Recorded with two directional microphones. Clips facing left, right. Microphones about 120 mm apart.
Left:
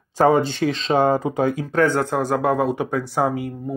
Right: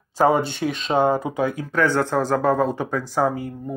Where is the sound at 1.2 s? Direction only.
40° left (ahead or behind).